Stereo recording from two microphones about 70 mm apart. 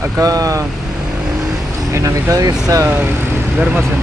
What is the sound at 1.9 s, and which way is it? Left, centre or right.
Speech, right.